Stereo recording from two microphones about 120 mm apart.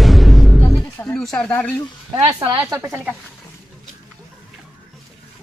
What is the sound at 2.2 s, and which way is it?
Speech, 15° right (ahead or behind).